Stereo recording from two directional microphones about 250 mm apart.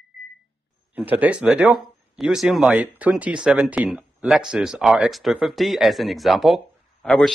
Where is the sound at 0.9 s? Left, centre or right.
Centre.